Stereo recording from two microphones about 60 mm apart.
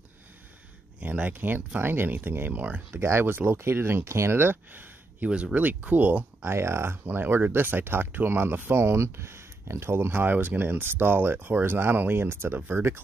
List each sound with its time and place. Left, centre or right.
0.9 s speech: right
3.0 s speech: right
5.3 s speech: right
6.5 s speech: right